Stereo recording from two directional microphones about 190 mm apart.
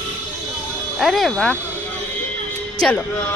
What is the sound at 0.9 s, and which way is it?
Speech, centre (ahead or behind).